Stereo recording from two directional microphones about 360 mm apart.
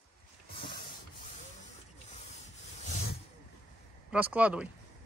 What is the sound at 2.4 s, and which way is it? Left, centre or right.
Rub, centre.